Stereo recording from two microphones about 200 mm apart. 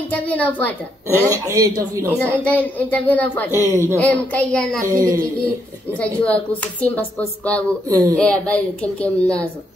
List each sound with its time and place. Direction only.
0.1 s speech: 10° left (ahead or behind)
1.3 s speech: 15° right (ahead or behind)
2.4 s speech: 5° left (ahead or behind)
3.7 s speech: 15° right (ahead or behind)
4.0 s speech: 5° left (ahead or behind)
4.8 s speech: 15° right (ahead or behind)
5.9 s speech: 5° left (ahead or behind)
7.9 s speech: 15° right (ahead or behind)
8.2 s speech: 5° left (ahead or behind)